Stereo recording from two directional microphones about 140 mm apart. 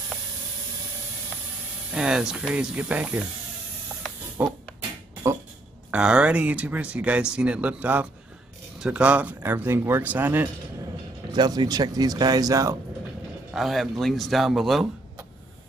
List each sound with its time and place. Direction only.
1.9 s speech: 5° right (ahead or behind)
3.9 s a sound: 10° right (ahead or behind)
5.9 s speech: 5° right (ahead or behind)
11.3 s speech: 30° right (ahead or behind)
13.5 s speech: centre (ahead or behind)